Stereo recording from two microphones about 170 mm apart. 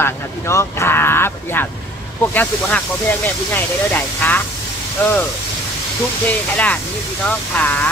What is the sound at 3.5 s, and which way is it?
Speech, 10° left (ahead or behind).